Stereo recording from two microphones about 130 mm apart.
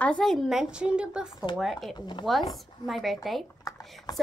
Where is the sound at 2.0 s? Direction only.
35° left (ahead or behind).